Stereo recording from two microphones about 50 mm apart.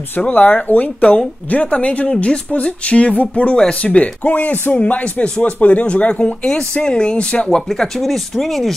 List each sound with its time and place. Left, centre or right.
0.3 s a woman's voice: left
6.4 s speech: centre